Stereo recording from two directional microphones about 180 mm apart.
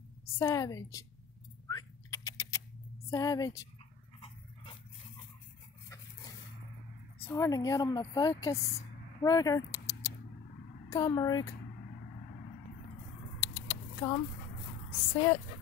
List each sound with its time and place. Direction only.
0.4 s a woman's voice: 15° left (ahead or behind)
1.7 s typing: 20° left (ahead or behind)
3.1 s speech: 20° left (ahead or behind)
4.2 s dog: 30° left (ahead or behind)
7.2 s speech: 15° left (ahead or behind)
10.9 s speech: 20° left (ahead or behind)
13.4 s a sound: 15° left (ahead or behind)